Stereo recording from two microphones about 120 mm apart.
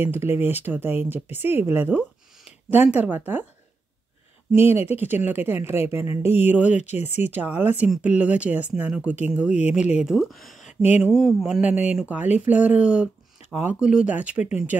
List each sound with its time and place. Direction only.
0.0 s speech: 20° right (ahead or behind)
5.0 s speech: 15° right (ahead or behind)
6.7 s speech: 75° left (ahead or behind)
7.2 s speech: 15° right (ahead or behind); by 10.6 s centre (ahead or behind)
10.6 s a sound: 75° left (ahead or behind)
11.0 s speech: 5° right (ahead or behind)